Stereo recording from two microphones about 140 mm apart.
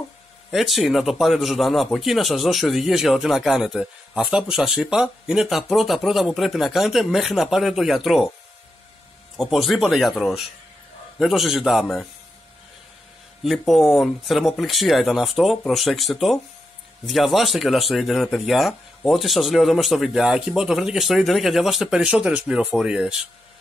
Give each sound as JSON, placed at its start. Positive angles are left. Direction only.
{"t": 0.5, "sound": "speech", "side_deg": 0}
{"t": 9.4, "sound": "speech", "side_deg": 0}
{"t": 13.4, "sound": "speech", "side_deg": 0}